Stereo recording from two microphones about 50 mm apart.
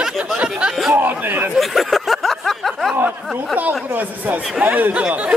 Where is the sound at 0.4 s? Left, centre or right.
Right.